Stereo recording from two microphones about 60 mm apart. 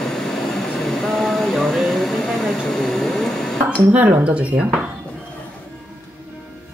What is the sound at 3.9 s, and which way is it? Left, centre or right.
Speech, right.